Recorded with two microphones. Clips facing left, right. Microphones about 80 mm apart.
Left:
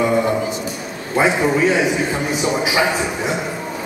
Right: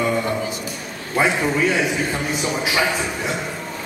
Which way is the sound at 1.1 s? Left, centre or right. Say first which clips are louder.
Left 3 dB; centre.